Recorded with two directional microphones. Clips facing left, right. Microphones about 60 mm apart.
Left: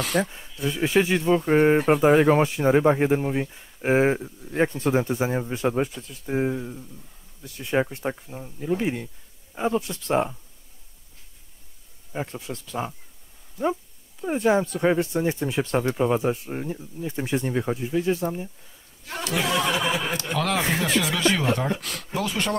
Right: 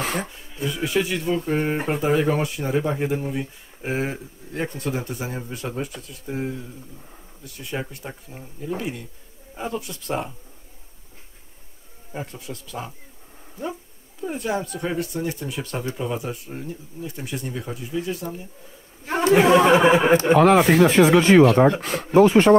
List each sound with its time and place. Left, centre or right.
0.0 s speech: right
0.7 s speech: left
12.2 s speech: left
14.2 s speech: left
19.0 s speech: right